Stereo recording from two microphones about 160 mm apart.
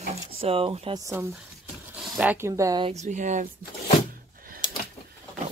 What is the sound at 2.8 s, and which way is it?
Speech, 45° right (ahead or behind).